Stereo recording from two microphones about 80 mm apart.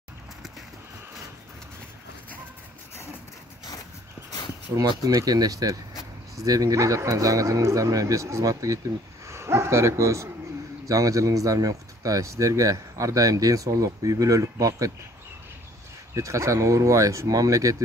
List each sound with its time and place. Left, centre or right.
4.7 s speech: right
5.0 s speech: right
16.2 s speech: right